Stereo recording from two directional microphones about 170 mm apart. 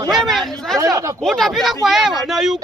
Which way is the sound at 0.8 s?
20° right (ahead or behind).